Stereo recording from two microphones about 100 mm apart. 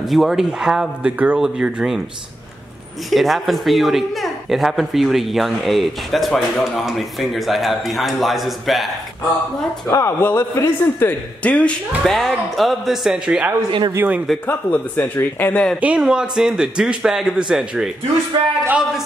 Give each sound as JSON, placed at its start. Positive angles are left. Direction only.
{"t": 0.0, "sound": "a man's voice", "side_deg": 0}
{"t": 3.1, "sound": "speech", "side_deg": 0}
{"t": 9.8, "sound": "speech", "side_deg": 30}
{"t": 11.4, "sound": "speech", "side_deg": 15}
{"t": 12.0, "sound": "speech", "side_deg": 0}
{"t": 13.7, "sound": "speech", "side_deg": -55}
{"t": 13.9, "sound": "a man's voice", "side_deg": -15}
{"t": 14.4, "sound": "speech", "side_deg": 20}
{"t": 15.8, "sound": "a man's voice", "side_deg": -10}